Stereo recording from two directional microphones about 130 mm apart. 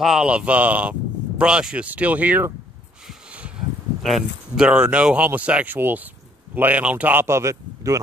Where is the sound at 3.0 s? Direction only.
10° right (ahead or behind).